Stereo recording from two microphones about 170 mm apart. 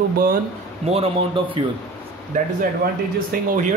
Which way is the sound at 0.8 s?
35° right (ahead or behind).